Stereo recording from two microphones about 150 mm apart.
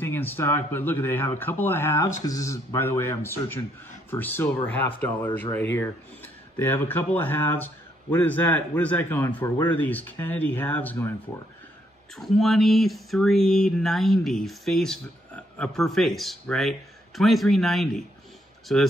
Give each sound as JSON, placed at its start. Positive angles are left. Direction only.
{"t": 0.0, "sound": "speech", "side_deg": 15}
{"t": 12.2, "sound": "speech", "side_deg": 0}